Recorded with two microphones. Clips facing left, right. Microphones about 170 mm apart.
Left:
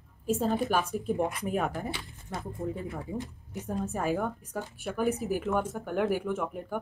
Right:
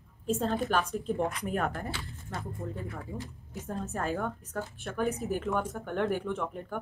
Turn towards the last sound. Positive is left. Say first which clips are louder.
# left 2 dB
turn(degrees=10)  # may be behind; listen again after turning